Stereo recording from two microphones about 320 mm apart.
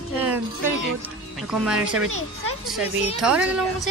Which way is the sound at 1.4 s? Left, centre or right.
Centre.